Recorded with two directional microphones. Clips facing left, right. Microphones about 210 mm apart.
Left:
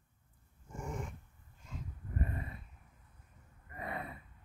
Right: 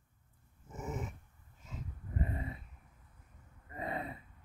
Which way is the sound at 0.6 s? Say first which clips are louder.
Right 1 dB; 5° right (ahead or behind).